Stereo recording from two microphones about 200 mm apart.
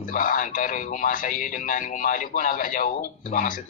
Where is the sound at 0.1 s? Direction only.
40° left (ahead or behind).